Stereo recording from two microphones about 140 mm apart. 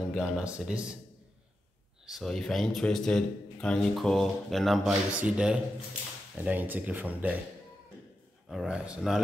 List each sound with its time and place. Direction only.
0.1 s speech: 10° right (ahead or behind)
2.0 s speech: centre (ahead or behind)
8.5 s speech: 5° right (ahead or behind)